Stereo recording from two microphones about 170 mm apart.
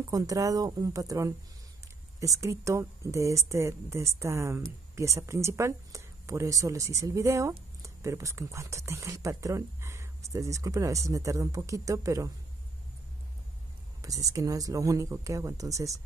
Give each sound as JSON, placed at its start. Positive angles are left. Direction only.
{"t": 0.0, "sound": "speech", "side_deg": -20}
{"t": 14.0, "sound": "speech", "side_deg": -20}